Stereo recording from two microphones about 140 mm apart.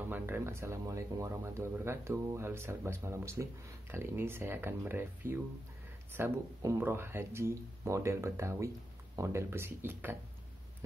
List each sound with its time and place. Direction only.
0.0 s speech: 15° right (ahead or behind)